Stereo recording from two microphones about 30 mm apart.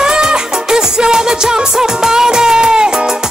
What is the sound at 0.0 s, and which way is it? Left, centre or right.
Music, right.